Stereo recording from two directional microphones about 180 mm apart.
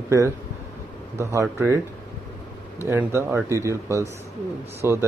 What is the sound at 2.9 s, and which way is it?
Speech, 15° right (ahead or behind).